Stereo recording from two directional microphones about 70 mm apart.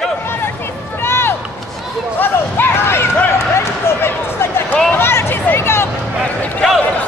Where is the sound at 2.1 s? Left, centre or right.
Left.